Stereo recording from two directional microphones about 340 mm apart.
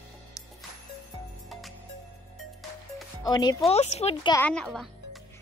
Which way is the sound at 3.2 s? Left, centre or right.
Centre.